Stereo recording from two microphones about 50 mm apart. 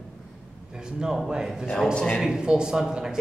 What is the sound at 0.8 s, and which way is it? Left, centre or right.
A man's voice, centre.